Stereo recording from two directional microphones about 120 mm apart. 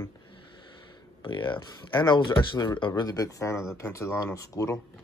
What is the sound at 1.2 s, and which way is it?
Speech, 45° left (ahead or behind).